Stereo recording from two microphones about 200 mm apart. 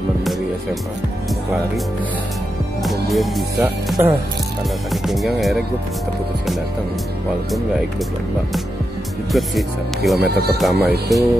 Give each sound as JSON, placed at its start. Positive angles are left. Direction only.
{"t": 2.8, "sound": "speech", "side_deg": 0}
{"t": 5.0, "sound": "speech", "side_deg": 0}
{"t": 9.3, "sound": "speech", "side_deg": 0}
{"t": 10.2, "sound": "speech", "side_deg": -55}
{"t": 10.6, "sound": "speech", "side_deg": 0}